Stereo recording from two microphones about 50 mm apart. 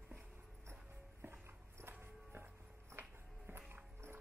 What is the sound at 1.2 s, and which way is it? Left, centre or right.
Music, right.